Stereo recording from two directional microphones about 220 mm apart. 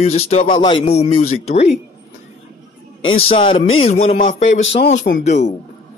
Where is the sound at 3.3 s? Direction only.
25° left (ahead or behind).